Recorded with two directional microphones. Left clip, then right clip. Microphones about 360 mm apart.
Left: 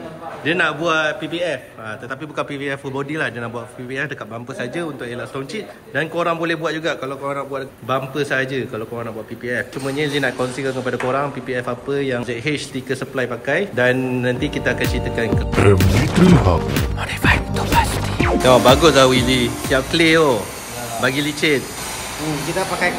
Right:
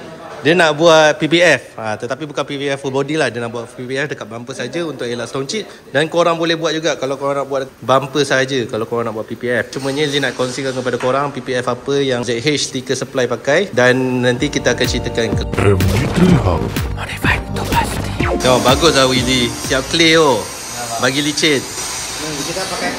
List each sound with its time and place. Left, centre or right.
0.4 s a man's voice: centre
2.3 s a man's voice: centre
4.6 s a man's voice: centre